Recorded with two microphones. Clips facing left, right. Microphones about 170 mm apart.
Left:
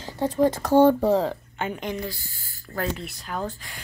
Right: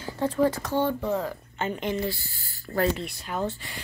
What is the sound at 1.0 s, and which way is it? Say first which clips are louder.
Speech: left 7 dB; 30° left (ahead or behind).